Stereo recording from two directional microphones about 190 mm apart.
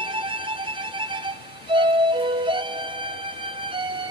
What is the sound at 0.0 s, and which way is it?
Music, 25° right (ahead or behind).